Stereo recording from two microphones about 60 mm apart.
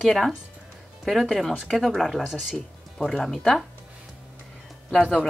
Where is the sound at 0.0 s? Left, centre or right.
Centre.